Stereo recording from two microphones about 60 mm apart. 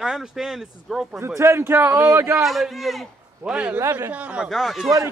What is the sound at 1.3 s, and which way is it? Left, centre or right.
Speech, right.